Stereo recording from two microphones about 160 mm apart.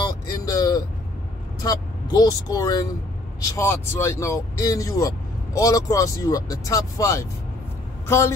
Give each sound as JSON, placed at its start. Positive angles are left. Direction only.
{"t": 0.0, "sound": "vehicle", "side_deg": 20}
{"t": 1.6, "sound": "speech", "side_deg": 25}